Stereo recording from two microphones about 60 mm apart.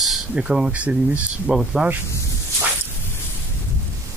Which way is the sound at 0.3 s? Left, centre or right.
Centre.